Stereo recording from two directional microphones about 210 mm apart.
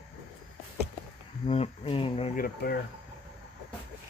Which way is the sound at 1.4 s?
30° left (ahead or behind).